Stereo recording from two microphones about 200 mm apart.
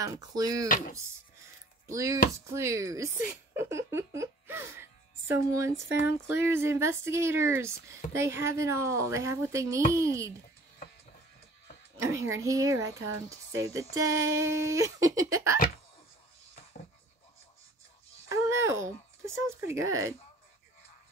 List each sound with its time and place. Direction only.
0.0 s speech: 15° right (ahead or behind)
0.7 s speech: 45° left (ahead or behind)
2.0 s speech: 15° right (ahead or behind)
12.0 s speech: 15° right (ahead or behind)
18.3 s speech: 15° right (ahead or behind)